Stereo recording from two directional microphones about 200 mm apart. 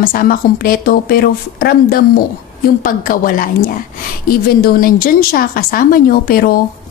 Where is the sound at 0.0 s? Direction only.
45° left (ahead or behind).